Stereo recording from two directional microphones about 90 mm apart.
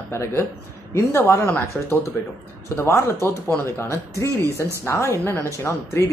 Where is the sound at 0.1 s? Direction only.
30° left (ahead or behind).